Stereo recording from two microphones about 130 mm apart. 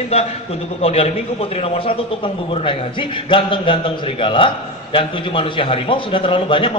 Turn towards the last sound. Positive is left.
turn(degrees=45)  # may be behind; listen again after turning